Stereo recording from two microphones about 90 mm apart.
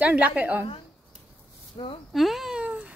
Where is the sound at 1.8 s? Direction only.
90° left.